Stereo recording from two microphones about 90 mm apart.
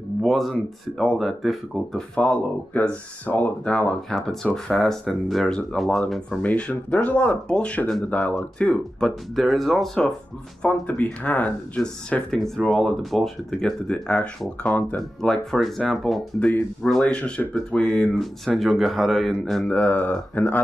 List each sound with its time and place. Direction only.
0.2 s speech: centre (ahead or behind)
4.1 s speech: 5° left (ahead or behind)
9.3 s speech: centre (ahead or behind)
10.6 s speech: 15° left (ahead or behind)
19.7 s speech: 15° left (ahead or behind)